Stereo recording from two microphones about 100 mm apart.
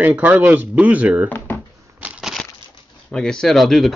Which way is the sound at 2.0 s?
10° right (ahead or behind).